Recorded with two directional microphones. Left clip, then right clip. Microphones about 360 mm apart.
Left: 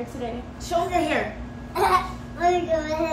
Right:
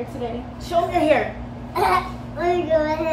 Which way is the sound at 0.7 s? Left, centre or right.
Centre.